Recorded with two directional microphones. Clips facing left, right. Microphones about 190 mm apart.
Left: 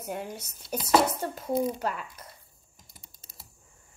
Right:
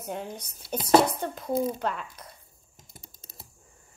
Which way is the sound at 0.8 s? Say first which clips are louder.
Right 3 dB; 30° right (ahead or behind).